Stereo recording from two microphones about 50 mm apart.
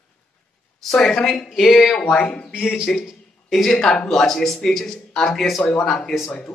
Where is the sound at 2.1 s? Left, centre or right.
Centre.